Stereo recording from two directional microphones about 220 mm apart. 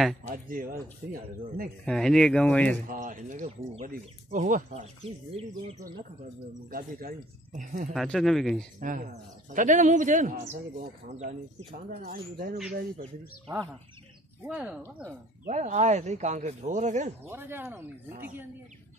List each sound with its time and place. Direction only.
0.2 s speech: 40° right (ahead or behind)
1.9 s speech: centre (ahead or behind)
2.9 s speech: 35° right (ahead or behind)
6.7 s speech: 40° right (ahead or behind)
7.9 s speech: centre (ahead or behind)
8.7 s speech: 35° right (ahead or behind)
14.4 s speech: 5° right (ahead or behind)
14.8 s speech: 5° left (ahead or behind)
15.4 s speech: 35° right (ahead or behind)
17.3 s speech: 10° right (ahead or behind)